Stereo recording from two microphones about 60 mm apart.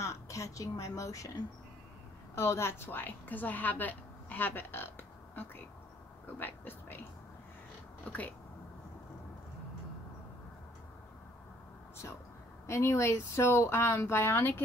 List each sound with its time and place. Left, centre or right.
0.0 s a woman's voice: left
2.3 s a woman's voice: left
8.1 s speech: left
12.6 s speech: left